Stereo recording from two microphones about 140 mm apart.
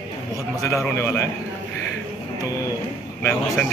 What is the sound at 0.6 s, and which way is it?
Speech, 20° left (ahead or behind).